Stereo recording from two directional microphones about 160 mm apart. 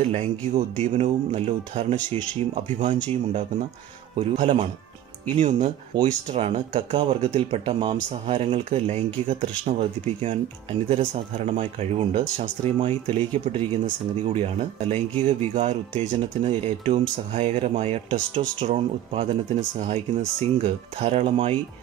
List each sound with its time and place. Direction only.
0.0 s speech: 40° right (ahead or behind)
4.2 s speech: 40° right (ahead or behind)
5.9 s speech: 25° right (ahead or behind)
6.3 s speech: 35° right (ahead or behind)